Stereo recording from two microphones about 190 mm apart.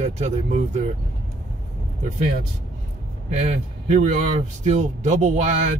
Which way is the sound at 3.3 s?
35° right (ahead or behind).